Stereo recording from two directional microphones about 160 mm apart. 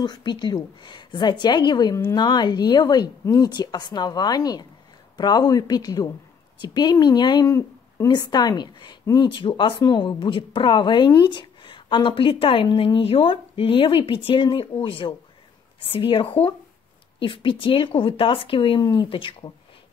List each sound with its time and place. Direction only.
0.0 s a woman's voice: 25° left (ahead or behind)